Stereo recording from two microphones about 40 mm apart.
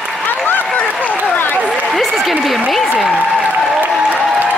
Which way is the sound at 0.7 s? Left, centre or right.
Left.